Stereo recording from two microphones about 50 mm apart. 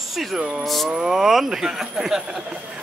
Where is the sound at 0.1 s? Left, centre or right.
Centre.